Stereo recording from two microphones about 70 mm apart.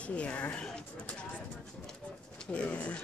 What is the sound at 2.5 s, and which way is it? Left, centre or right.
Speech, centre.